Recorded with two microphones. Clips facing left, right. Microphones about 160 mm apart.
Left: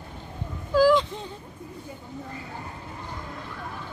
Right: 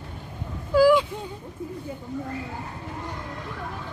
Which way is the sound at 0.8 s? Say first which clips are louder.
Right 2 dB; 10° right (ahead or behind).